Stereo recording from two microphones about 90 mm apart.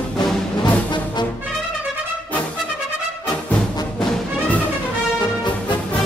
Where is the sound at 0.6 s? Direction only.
55° left (ahead or behind).